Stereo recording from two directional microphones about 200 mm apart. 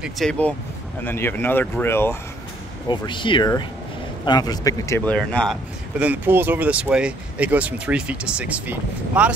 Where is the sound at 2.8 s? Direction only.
20° left (ahead or behind).